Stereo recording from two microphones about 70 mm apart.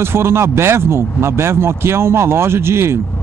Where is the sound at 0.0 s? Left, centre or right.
Right.